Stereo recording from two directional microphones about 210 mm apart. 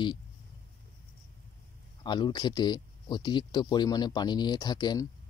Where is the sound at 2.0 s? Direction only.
20° left (ahead or behind).